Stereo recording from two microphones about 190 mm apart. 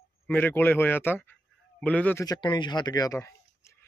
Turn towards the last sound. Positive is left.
turn(degrees=15)  # may be behind; listen again after turning